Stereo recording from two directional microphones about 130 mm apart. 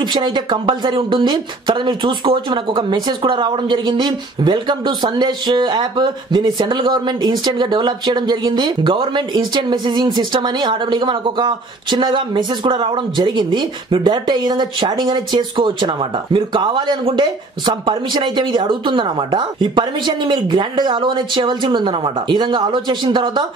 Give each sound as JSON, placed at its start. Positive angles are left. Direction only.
{"t": 0.0, "sound": "speech", "side_deg": -35}